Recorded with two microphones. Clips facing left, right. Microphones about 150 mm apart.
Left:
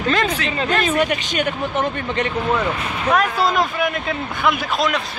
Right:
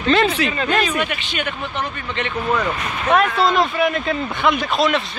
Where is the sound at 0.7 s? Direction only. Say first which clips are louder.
Left 6 dB; 45° left (ahead or behind).